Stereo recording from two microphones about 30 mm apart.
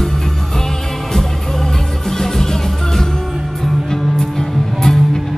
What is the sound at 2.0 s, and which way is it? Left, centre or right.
Music, centre.